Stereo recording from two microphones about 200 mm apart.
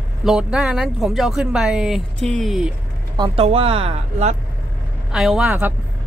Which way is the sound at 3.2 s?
30° right (ahead or behind).